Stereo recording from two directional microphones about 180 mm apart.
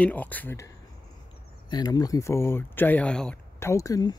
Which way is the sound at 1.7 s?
20° left (ahead or behind).